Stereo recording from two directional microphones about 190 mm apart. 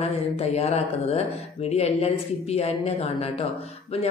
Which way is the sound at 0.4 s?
35° left (ahead or behind).